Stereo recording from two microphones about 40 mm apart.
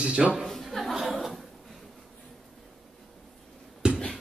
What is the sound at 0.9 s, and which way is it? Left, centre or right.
Chuckle, centre.